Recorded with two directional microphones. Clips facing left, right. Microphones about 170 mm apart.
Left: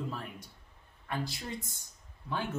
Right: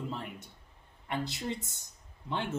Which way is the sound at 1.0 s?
20° right (ahead or behind).